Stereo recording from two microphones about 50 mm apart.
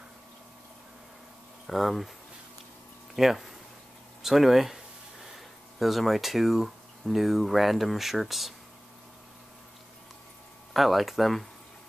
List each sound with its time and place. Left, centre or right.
1.7 s speech: centre
3.2 s speech: centre
10.7 s speech: centre